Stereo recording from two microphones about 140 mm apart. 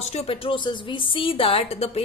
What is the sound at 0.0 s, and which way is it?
A woman's voice, 50° left (ahead or behind).